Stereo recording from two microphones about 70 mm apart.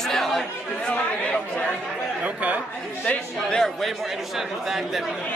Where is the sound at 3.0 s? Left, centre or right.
Centre.